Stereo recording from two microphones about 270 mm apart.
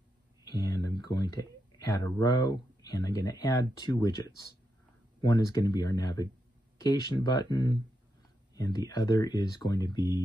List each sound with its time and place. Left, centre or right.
0.5 s a sound: centre
1.8 s speech: centre
5.2 s speech: centre